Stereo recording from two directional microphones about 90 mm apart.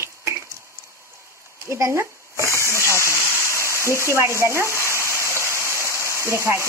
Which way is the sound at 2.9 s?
30° left (ahead or behind).